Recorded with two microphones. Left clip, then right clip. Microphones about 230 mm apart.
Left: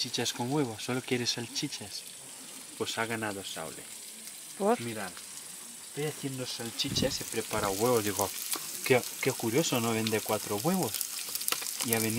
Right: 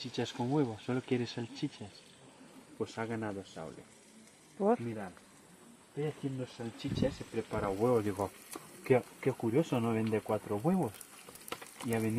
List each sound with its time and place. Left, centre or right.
0.0 s speech: centre
2.8 s speech: centre
10.9 s frying: centre